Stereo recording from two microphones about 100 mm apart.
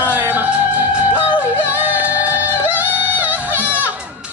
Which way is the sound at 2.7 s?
15° right (ahead or behind).